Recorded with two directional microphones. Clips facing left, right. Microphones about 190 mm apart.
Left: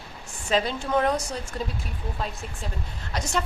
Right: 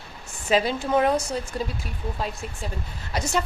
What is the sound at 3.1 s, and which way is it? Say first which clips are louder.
Speech: right 3 dB; 5° right (ahead or behind).